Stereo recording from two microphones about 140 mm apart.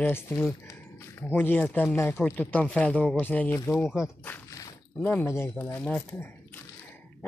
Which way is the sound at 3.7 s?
Centre (ahead or behind).